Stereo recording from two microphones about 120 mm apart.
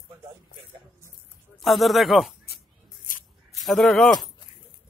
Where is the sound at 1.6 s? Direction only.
Centre (ahead or behind).